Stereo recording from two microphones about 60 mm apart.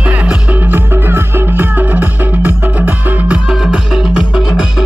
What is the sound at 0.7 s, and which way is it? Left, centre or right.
Music, right.